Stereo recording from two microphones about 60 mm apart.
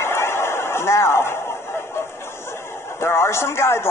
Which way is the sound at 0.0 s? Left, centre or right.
Left.